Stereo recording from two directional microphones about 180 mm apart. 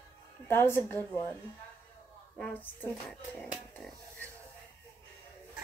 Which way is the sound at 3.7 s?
10° left (ahead or behind).